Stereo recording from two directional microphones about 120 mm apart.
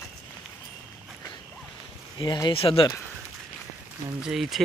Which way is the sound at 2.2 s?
40° left (ahead or behind).